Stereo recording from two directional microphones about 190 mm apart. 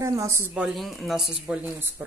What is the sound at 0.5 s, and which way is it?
A woman's voice, centre (ahead or behind).